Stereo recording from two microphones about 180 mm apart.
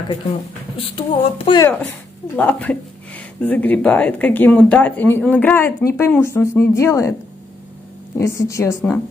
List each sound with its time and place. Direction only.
0.7 s speech: 30° left (ahead or behind)
2.3 s speech: 10° left (ahead or behind)
8.2 s speech: 15° left (ahead or behind)